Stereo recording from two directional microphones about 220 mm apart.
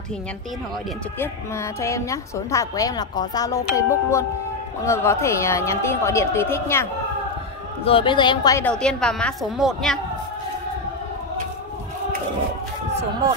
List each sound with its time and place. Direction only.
1.2 s a woman's voice: 10° left (ahead or behind)
7.8 s a woman's voice: 25° left (ahead or behind)
8.6 s a woman's voice: 5° left (ahead or behind)